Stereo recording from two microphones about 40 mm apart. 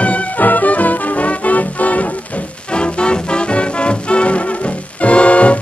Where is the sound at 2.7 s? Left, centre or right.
Left.